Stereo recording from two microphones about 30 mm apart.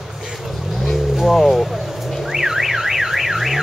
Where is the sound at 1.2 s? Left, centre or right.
Centre.